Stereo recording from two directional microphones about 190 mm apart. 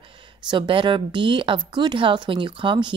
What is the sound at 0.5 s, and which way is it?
Speech, 25° right (ahead or behind).